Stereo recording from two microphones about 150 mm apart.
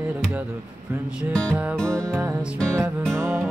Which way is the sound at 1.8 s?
20° right (ahead or behind).